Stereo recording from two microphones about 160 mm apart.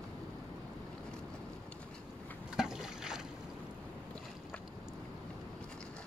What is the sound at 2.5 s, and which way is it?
Boat, 5° right (ahead or behind).